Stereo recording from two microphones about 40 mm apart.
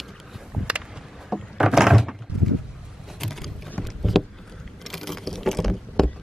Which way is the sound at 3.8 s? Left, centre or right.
Centre.